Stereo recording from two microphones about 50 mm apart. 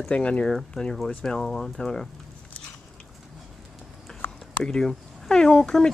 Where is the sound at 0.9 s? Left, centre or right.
Centre.